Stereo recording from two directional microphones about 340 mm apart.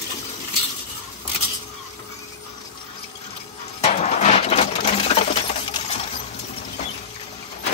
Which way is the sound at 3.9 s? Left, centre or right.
Centre.